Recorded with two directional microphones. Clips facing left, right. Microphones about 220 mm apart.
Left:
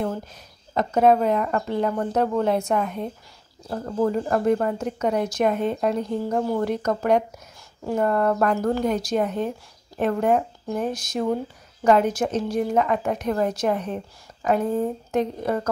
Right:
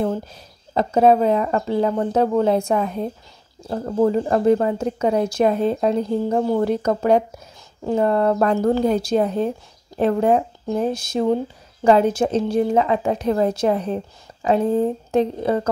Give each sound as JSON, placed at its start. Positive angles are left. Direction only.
{"t": 0.7, "sound": "a woman's voice", "side_deg": -30}